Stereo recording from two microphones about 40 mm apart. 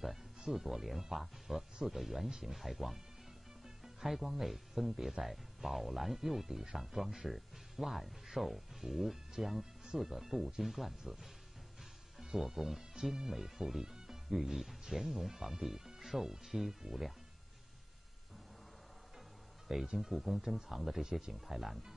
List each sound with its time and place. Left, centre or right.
0.5 s speech: centre
19.7 s speech: centre